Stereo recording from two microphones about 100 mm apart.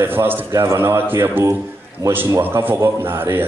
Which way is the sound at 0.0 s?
20° right (ahead or behind).